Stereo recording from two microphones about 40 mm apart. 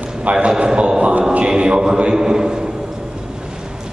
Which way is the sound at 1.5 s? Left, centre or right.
Centre.